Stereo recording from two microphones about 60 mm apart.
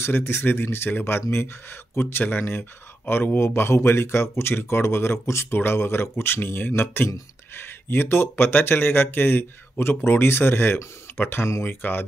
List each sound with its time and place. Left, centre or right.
0.0 s speech: left